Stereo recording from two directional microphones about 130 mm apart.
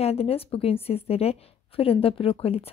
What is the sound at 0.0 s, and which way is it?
Speech, 50° left (ahead or behind).